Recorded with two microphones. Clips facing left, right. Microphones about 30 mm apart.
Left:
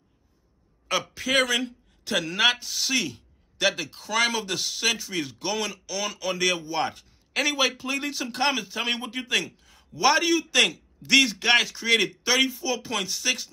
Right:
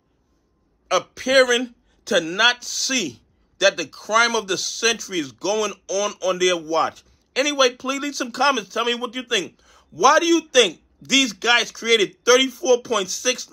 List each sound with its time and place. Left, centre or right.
2.0 s a man's voice: left